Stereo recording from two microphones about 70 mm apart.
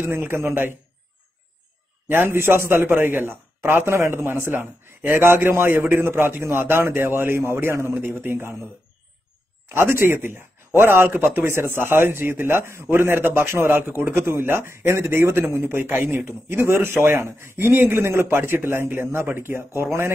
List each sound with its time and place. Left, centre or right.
0.0 s a man's voice: right
2.0 s a man's voice: right
9.7 s a man's voice: right